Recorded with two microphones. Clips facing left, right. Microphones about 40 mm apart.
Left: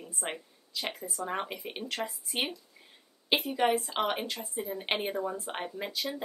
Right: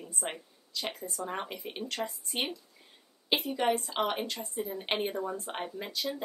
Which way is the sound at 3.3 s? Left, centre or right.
Centre.